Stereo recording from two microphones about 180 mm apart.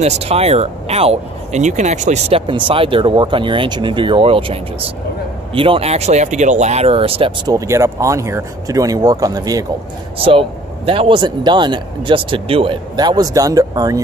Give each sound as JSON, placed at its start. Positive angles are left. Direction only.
{"t": 0.0, "sound": "speech", "side_deg": -35}
{"t": 10.1, "sound": "speech", "side_deg": -30}